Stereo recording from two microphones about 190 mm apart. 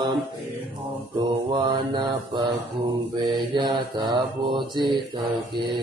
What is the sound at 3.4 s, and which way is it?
Mantra, 25° right (ahead or behind).